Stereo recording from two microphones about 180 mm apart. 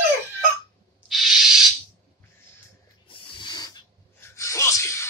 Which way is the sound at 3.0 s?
30° left (ahead or behind).